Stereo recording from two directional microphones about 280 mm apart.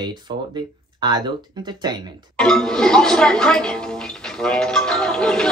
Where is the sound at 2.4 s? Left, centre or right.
Centre.